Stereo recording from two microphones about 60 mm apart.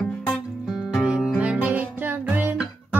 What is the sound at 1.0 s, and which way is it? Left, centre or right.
Music, centre.